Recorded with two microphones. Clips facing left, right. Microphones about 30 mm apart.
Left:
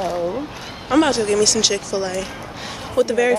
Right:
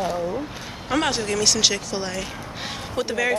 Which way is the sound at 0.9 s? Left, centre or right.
Centre.